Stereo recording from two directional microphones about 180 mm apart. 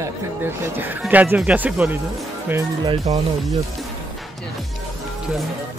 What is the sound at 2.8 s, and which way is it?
Speech, 35° right (ahead or behind).